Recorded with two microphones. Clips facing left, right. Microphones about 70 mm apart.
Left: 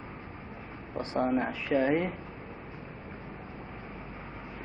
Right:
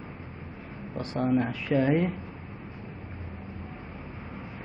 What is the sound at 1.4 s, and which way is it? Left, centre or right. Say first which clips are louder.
Speech: right 2 dB; centre.